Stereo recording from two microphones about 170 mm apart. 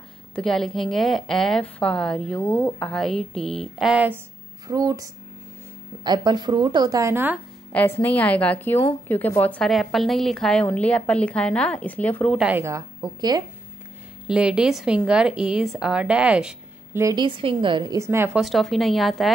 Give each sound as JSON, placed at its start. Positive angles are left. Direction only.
{"t": 0.4, "sound": "a woman's voice", "side_deg": 5}
{"t": 4.6, "sound": "a woman's voice", "side_deg": -20}
{"t": 7.7, "sound": "a woman's voice", "side_deg": 10}
{"t": 12.4, "sound": "speech", "side_deg": -10}
{"t": 14.2, "sound": "a woman's voice", "side_deg": -5}
{"t": 17.0, "sound": "a woman's voice", "side_deg": -25}
{"t": 18.4, "sound": "a woman's voice", "side_deg": 0}